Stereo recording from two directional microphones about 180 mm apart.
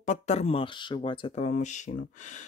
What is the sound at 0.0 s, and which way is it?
Speech, 40° left (ahead or behind).